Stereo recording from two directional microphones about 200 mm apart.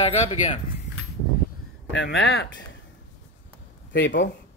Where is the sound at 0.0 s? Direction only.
30° left (ahead or behind).